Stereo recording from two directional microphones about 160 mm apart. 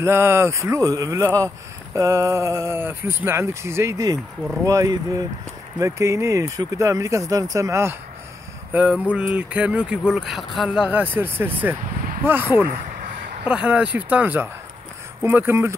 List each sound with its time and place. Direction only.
0.0 s speech: 15° right (ahead or behind)